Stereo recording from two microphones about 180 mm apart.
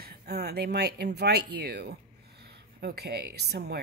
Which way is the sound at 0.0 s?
60° right (ahead or behind).